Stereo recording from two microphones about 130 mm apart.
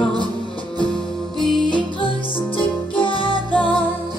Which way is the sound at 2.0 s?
40° left (ahead or behind).